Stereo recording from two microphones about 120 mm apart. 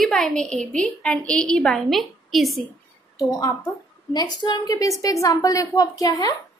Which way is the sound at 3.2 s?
30° left (ahead or behind).